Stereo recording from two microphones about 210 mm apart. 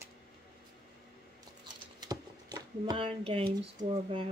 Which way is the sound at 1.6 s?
20° right (ahead or behind).